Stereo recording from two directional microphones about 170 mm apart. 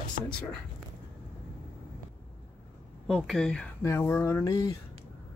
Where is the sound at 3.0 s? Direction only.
Centre (ahead or behind).